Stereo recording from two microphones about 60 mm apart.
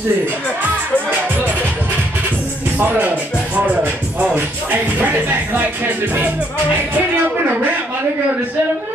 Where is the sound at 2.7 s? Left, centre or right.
Right.